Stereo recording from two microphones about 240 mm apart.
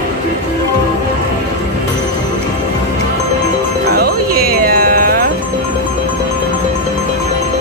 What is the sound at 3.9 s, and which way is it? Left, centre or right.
Music, right.